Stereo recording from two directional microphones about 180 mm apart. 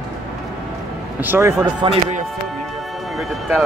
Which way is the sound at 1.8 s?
30° right (ahead or behind).